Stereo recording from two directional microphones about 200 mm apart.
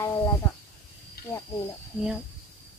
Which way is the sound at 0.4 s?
10° left (ahead or behind).